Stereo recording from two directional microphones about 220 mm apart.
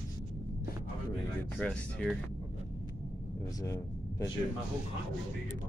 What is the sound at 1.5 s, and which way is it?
Speech, 5° left (ahead or behind).